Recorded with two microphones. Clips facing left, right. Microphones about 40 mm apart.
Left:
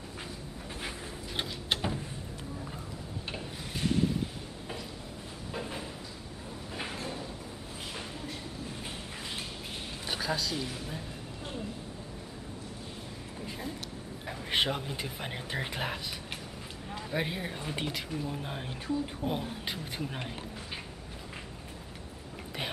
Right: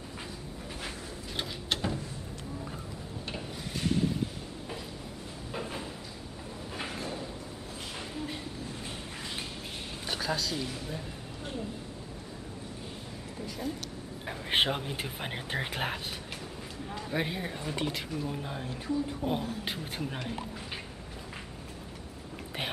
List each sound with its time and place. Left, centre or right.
0.8 s a sound: centre
5.5 s a sound: centre
10.0 s a woman's voice: centre
14.2 s a man's voice: centre
16.9 s speech: centre
18.4 s a woman's voice: left
19.6 s speech: centre